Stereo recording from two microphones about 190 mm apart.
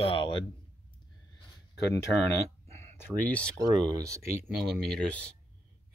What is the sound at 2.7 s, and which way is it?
Speech, 5° left (ahead or behind).